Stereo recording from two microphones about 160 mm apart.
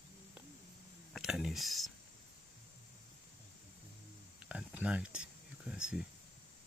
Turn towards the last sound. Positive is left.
turn(degrees=-5)  # may be behind; listen again after turning